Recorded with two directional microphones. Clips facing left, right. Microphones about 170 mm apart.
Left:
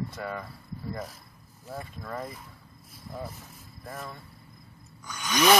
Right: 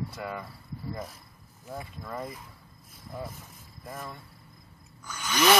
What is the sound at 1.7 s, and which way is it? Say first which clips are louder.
Speech: left 1 dB; 5° right (ahead or behind).